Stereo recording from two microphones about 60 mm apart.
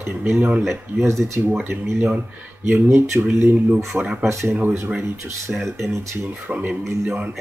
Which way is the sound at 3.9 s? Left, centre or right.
Centre.